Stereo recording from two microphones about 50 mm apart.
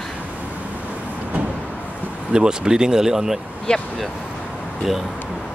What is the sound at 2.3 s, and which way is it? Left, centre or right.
Speech, centre.